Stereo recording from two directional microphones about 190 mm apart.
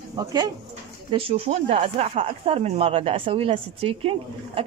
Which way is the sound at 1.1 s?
30° right (ahead or behind).